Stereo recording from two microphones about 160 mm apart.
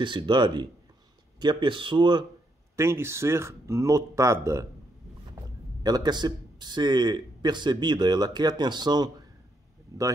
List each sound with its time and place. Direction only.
0.0 s speech: 30° right (ahead or behind)
2.7 s speech: 15° right (ahead or behind)
5.8 s speech: 25° right (ahead or behind)